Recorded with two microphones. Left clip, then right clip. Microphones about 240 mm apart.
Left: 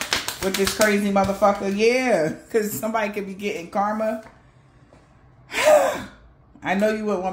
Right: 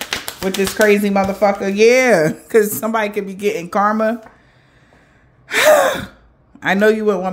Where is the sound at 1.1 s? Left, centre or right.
Right.